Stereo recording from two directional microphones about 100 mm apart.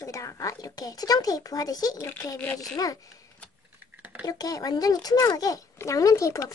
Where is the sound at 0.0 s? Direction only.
30° left (ahead or behind).